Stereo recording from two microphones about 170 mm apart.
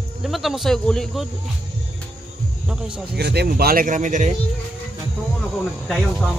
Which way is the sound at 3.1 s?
70° right (ahead or behind).